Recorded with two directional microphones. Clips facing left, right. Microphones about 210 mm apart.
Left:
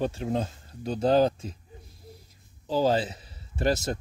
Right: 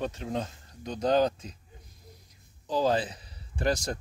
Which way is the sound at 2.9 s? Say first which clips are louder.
Left 2 dB; 25° left (ahead or behind).